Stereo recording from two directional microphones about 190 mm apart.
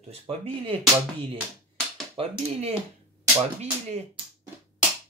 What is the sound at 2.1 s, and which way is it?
Speech, 30° right (ahead or behind).